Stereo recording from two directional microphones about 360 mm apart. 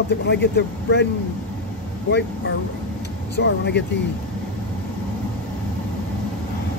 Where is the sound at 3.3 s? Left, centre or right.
Left.